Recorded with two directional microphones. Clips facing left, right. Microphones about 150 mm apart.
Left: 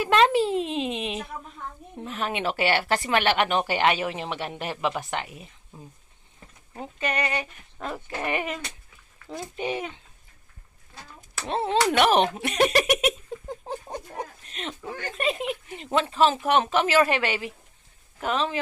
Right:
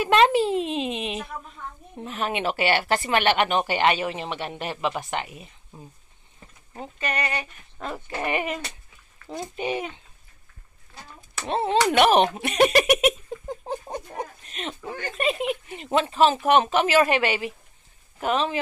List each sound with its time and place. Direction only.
0.0 s speech: 5° right (ahead or behind)
7.0 s speech: 20° left (ahead or behind)
7.9 s speech: 5° right (ahead or behind)
9.6 s speech: 5° right (ahead or behind)
11.3 s speech: 5° right (ahead or behind)
13.7 s a sound: 10° right (ahead or behind)
14.8 s speech: 5° right (ahead or behind)